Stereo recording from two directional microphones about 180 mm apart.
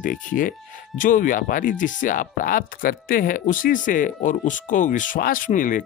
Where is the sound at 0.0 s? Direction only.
50° left (ahead or behind).